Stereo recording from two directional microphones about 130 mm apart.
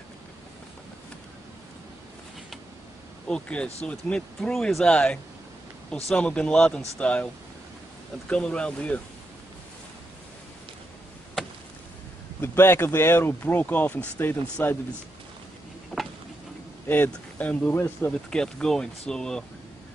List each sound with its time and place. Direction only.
3.3 s speech: 5° left (ahead or behind)
8.3 s speech: 5° left (ahead or behind)
12.4 s speech: 20° left (ahead or behind)
15.9 s tick-tock: 5° left (ahead or behind)
16.8 s speech: 15° left (ahead or behind)
18.3 s speech: 5° left (ahead or behind)